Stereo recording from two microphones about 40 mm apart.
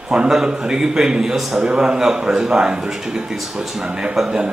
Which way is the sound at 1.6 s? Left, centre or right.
Right.